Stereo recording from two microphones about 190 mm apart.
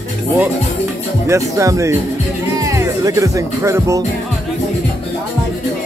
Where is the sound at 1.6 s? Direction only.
15° right (ahead or behind).